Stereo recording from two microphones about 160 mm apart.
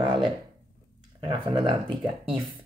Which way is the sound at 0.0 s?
30° right (ahead or behind).